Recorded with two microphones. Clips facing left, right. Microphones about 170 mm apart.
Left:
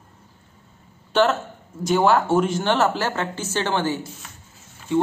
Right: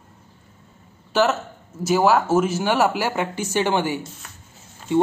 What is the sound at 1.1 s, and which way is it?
Speech, 5° right (ahead or behind).